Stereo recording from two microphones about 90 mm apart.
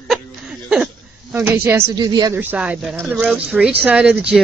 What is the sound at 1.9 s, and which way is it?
Speech, 50° right (ahead or behind).